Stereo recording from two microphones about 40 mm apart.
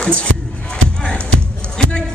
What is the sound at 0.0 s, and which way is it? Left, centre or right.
Music, left.